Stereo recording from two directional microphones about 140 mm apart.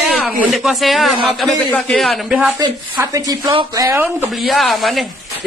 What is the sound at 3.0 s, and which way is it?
Speech, 25° right (ahead or behind).